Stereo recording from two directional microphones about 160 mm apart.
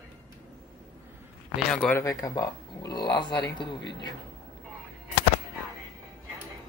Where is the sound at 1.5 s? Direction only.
5° left (ahead or behind); by 3.8 s 30° left (ahead or behind).